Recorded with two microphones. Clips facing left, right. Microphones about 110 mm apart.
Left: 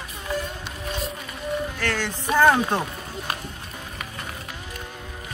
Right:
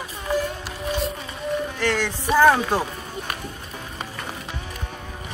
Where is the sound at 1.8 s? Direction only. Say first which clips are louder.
Right 4 dB; 15° right (ahead or behind).